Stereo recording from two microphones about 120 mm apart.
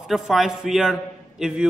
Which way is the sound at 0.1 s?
Centre (ahead or behind).